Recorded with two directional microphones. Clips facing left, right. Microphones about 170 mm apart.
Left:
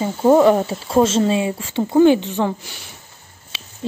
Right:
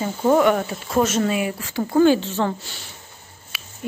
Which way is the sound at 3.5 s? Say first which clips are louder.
Left 2 dB; 25° left (ahead or behind).